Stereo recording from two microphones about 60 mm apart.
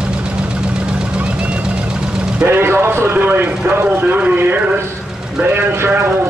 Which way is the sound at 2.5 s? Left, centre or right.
Right.